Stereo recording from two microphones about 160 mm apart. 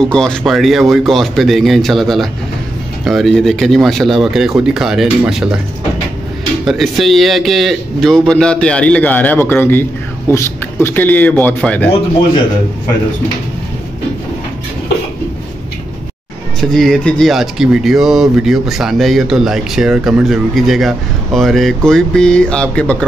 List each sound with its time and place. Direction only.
0.1 s speech: 5° left (ahead or behind)
6.6 s speech: centre (ahead or behind)
16.7 s speech: centre (ahead or behind)